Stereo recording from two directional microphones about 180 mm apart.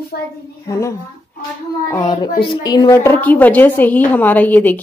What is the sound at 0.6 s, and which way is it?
A woman's voice, 15° left (ahead or behind).